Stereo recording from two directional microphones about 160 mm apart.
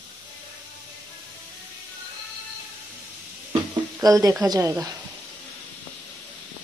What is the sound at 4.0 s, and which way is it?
Speech, 20° right (ahead or behind).